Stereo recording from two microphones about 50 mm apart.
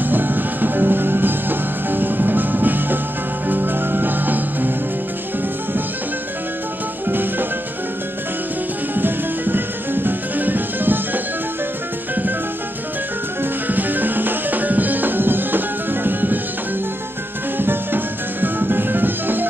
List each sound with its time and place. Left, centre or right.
0.0 s music: right
7.1 s music: right
8.9 s music: right
13.4 s music: right
17.6 s music: right